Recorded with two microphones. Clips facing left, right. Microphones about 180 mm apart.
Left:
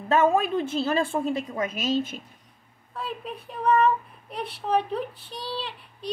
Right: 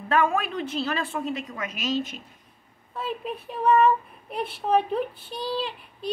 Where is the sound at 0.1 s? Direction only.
25° left (ahead or behind).